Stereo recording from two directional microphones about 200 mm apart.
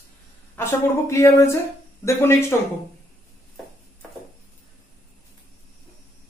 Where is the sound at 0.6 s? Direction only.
15° left (ahead or behind).